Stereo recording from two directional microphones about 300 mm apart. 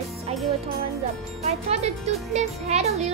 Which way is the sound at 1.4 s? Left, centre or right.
Right.